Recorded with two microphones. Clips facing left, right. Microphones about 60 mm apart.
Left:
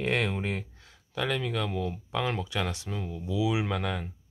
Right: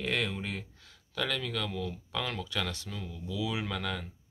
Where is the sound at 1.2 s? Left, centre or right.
Left.